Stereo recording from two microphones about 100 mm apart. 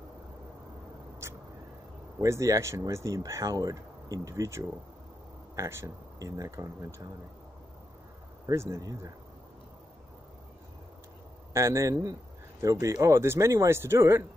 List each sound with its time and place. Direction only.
1.2 s vehicle: 25° right (ahead or behind)
2.2 s speech: 30° right (ahead or behind)
8.5 s speech: 30° right (ahead or behind)
11.5 s speech: 30° right (ahead or behind)